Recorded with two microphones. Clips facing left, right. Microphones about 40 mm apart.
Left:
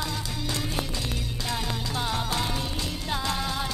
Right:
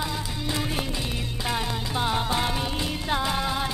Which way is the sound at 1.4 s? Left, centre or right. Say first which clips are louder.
Right 3 dB; right.